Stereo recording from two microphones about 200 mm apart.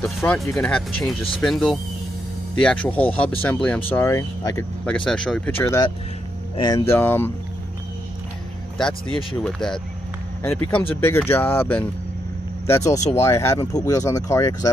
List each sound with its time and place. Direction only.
0.2 s speech: 15° left (ahead or behind)
4.8 s speech: 5° left (ahead or behind)
8.7 s speech: 5° left (ahead or behind)